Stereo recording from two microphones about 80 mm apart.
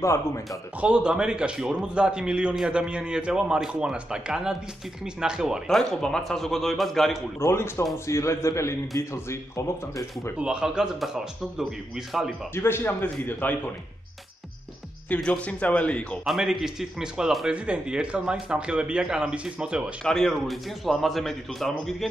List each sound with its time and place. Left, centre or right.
0.0 s a man's voice: left
0.7 s a man's voice: centre
5.7 s speech: centre
7.3 s a man's voice: left
10.3 s a man's voice: centre
12.5 s a man's voice: left
15.2 s speech: centre
16.3 s a man's voice: centre
20.0 s speech: centre